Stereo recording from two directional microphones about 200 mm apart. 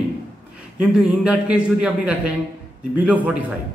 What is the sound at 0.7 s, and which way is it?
A man's voice, 5° right (ahead or behind).